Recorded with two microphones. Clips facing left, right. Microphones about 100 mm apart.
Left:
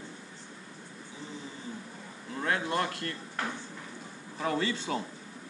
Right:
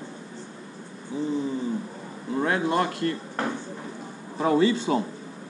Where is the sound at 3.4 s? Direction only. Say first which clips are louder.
Right 6 dB; 35° right (ahead or behind).